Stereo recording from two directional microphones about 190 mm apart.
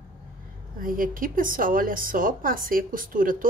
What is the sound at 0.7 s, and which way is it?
A woman's voice, 45° right (ahead or behind).